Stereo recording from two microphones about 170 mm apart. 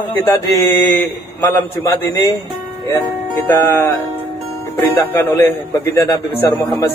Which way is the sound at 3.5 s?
20° left (ahead or behind).